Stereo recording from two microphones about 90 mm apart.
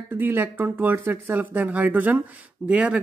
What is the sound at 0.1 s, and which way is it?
Speech, 20° right (ahead or behind).